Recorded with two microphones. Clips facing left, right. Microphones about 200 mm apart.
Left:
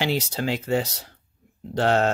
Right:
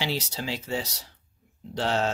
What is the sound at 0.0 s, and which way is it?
Speech, 55° left (ahead or behind).